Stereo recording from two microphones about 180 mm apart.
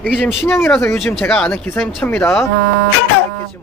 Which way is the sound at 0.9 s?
Centre (ahead or behind).